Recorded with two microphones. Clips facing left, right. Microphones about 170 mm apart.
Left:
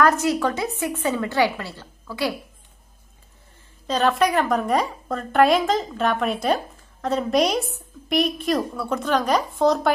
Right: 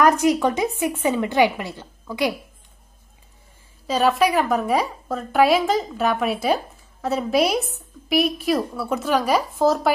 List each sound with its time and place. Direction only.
0.0 s a woman's voice: 15° right (ahead or behind)
3.8 s a woman's voice: 5° right (ahead or behind)